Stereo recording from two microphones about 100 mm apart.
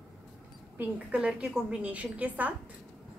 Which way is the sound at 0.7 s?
15° right (ahead or behind).